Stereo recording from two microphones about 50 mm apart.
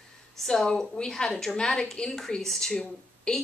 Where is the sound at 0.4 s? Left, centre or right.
Centre.